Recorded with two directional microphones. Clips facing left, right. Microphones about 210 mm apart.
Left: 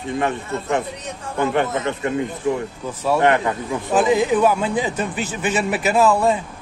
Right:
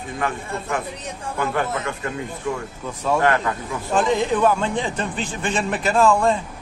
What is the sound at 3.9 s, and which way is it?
A man's voice, 5° left (ahead or behind).